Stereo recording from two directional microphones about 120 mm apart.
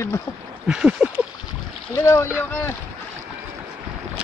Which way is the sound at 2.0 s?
30° left (ahead or behind).